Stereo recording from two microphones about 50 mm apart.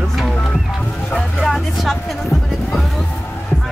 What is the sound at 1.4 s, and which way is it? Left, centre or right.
Music, centre.